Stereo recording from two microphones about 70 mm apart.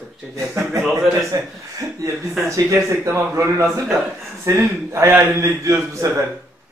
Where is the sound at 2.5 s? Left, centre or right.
Right.